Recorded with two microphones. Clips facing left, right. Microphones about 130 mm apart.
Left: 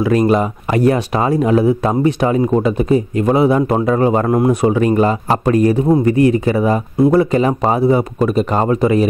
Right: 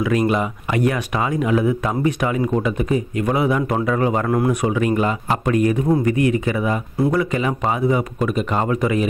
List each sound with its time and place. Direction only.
0.0 s speech: 35° left (ahead or behind)